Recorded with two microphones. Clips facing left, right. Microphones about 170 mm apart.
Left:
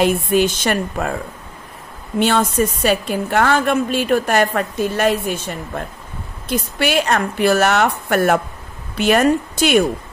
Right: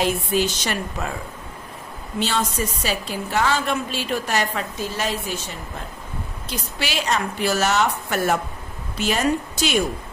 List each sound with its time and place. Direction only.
0.0 s a woman's voice: 55° left (ahead or behind)
2.1 s a woman's voice: 55° left (ahead or behind)